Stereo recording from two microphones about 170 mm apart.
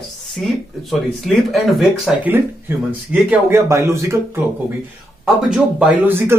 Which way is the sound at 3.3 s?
15° right (ahead or behind).